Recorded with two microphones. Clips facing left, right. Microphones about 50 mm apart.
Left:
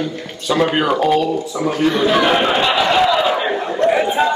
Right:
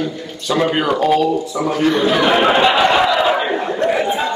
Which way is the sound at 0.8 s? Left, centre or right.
Centre.